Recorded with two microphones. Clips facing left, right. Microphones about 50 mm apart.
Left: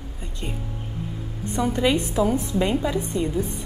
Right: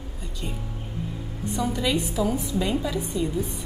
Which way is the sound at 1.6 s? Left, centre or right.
Left.